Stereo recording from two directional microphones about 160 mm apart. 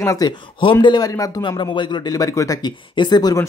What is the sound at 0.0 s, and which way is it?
Speech, 20° left (ahead or behind).